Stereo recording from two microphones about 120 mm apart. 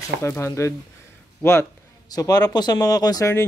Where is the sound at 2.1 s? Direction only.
30° left (ahead or behind).